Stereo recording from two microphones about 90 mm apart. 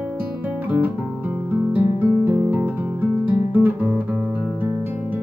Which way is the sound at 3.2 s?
20° right (ahead or behind).